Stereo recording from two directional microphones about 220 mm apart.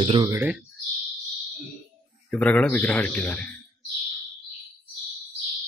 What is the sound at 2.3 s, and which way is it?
A man's voice, 5° left (ahead or behind).